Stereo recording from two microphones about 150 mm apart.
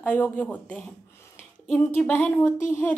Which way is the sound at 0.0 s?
10° left (ahead or behind).